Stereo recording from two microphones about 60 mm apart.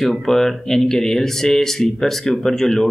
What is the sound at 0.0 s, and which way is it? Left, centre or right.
Speech, centre.